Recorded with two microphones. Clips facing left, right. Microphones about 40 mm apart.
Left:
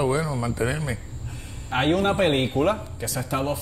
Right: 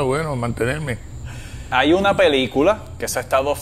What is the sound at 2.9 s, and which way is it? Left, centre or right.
Speech, right.